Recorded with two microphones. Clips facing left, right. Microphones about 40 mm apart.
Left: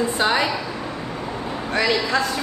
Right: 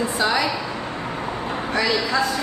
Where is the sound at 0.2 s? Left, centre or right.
Left.